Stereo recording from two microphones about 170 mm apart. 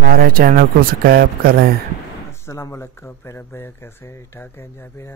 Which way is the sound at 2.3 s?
15° left (ahead or behind).